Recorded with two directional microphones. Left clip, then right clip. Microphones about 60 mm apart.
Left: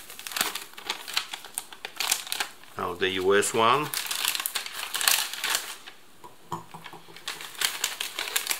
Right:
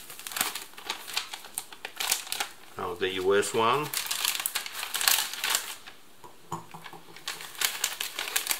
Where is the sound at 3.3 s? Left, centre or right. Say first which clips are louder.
Left 3 dB; left.